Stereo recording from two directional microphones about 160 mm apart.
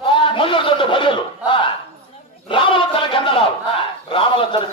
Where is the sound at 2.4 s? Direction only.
30° left (ahead or behind).